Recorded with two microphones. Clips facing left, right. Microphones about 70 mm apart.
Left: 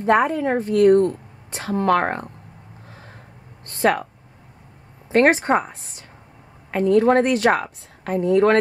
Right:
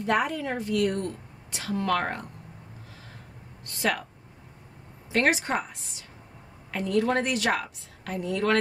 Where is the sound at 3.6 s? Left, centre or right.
Left.